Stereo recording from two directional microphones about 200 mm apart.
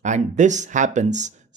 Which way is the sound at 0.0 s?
40° right (ahead or behind).